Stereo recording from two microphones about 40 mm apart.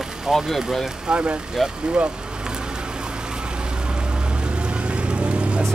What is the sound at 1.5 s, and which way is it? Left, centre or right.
Vehicle, centre.